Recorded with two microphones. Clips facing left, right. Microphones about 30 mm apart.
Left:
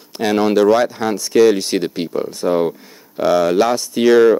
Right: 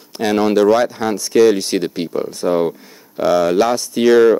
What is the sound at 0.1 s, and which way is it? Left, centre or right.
Speech, centre.